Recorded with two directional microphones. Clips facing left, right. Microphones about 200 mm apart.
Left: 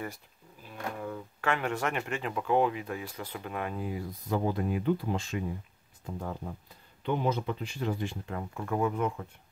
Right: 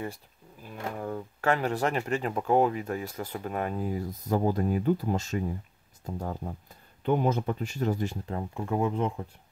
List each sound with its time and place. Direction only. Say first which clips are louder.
1.0 s speech: right 5 dB; 40° right (ahead or behind)
8.4 s speech: right 2 dB; 25° right (ahead or behind)